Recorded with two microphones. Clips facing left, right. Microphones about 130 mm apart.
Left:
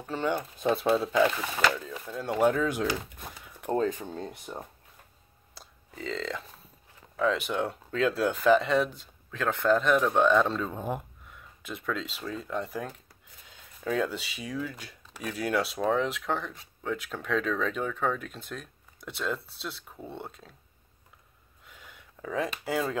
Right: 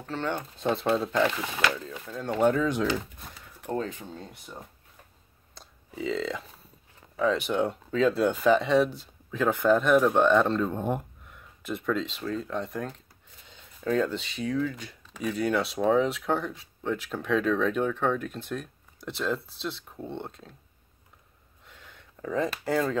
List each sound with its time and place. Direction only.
0.0 s speech: 10° left (ahead or behind)
3.6 s speech: 35° left (ahead or behind)
5.5 s a sound: centre (ahead or behind)
7.2 s speech: centre (ahead or behind)
21.6 s a sound: 10° left (ahead or behind)
22.2 s speech: 5° left (ahead or behind)